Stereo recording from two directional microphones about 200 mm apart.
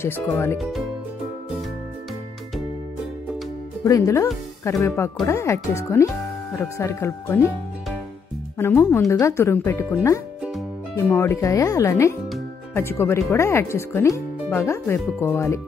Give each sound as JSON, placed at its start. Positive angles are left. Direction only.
{"t": 0.0, "sound": "speech", "side_deg": 10}
{"t": 0.6, "sound": "speech", "side_deg": 0}
{"t": 3.8, "sound": "speech", "side_deg": 15}
{"t": 8.5, "sound": "speech", "side_deg": 10}
{"t": 11.0, "sound": "speech", "side_deg": 10}